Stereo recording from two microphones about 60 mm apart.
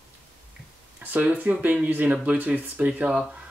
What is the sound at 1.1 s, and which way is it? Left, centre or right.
Speech, right.